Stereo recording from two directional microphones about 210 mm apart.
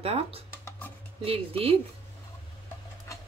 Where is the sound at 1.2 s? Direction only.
25° right (ahead or behind).